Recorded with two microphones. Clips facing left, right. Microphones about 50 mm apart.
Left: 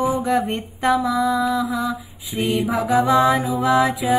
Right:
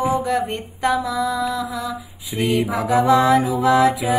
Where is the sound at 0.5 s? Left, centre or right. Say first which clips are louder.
Left 1 dB; centre.